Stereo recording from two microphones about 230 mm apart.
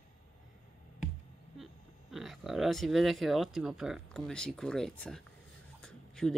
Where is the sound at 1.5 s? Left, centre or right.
Centre.